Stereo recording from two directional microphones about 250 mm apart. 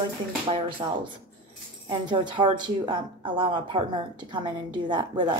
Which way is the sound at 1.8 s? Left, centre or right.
Centre.